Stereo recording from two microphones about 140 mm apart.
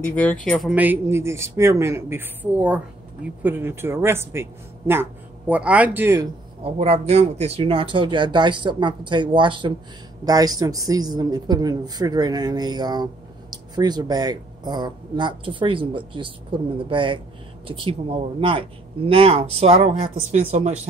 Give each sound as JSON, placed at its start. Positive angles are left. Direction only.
{"t": 0.1, "sound": "speech", "side_deg": 10}
{"t": 0.5, "sound": "speech", "side_deg": 0}
{"t": 0.7, "sound": "speech", "side_deg": -15}
{"t": 6.6, "sound": "speech", "side_deg": -45}